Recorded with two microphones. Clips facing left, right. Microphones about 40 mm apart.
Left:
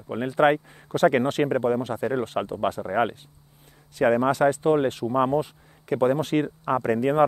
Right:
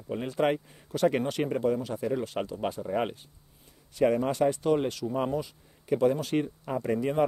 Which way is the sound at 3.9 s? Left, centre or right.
Left.